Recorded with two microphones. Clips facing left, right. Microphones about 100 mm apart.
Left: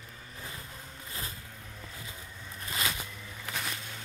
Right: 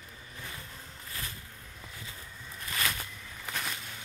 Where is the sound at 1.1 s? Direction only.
25° left (ahead or behind).